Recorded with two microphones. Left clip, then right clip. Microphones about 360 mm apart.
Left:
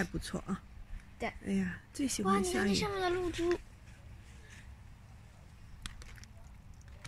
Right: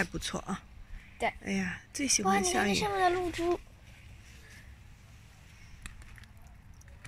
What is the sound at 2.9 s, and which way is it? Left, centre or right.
Speech, right.